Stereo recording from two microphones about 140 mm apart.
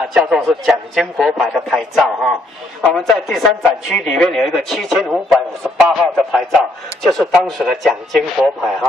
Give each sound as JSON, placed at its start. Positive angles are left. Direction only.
{"t": 0.1, "sound": "speech", "side_deg": -5}